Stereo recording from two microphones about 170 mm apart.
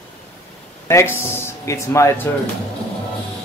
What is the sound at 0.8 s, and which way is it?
Speech, 15° left (ahead or behind).